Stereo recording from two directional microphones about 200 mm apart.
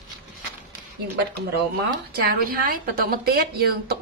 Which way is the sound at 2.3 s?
45° right (ahead or behind).